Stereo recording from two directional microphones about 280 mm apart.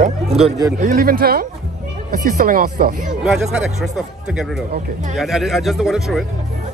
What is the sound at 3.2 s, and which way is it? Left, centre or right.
Speech, centre.